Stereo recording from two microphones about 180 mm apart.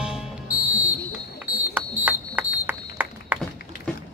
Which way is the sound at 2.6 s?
10° right (ahead or behind).